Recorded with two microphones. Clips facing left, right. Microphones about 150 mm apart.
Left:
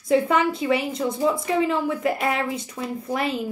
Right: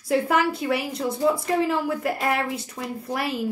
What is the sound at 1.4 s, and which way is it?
Speech, centre (ahead or behind).